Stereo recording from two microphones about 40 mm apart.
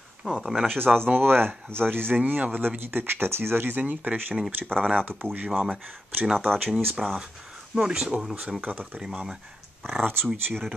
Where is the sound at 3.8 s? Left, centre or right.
Right.